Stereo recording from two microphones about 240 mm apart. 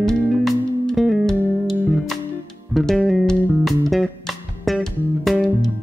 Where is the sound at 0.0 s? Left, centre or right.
Centre.